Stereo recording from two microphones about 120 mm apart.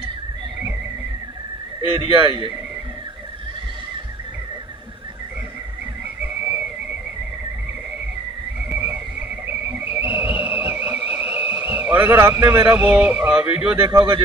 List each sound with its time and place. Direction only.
2.0 s speech: 45° right (ahead or behind)
8.6 s whistle: 15° right (ahead or behind)
12.7 s speech: 10° right (ahead or behind)
13.8 s speech: 40° right (ahead or behind)